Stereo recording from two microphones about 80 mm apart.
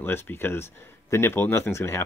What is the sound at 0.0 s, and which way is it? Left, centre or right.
Speech, left.